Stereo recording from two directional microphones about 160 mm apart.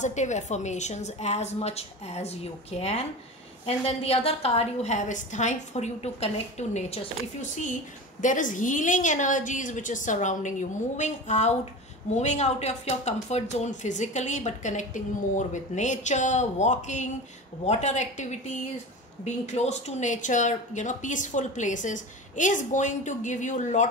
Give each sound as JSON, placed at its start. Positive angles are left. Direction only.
{"t": 0.0, "sound": "a woman's voice", "side_deg": 50}
{"t": 8.2, "sound": "speech", "side_deg": 55}